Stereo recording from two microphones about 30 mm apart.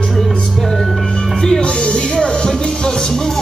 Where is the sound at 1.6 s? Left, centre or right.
Left.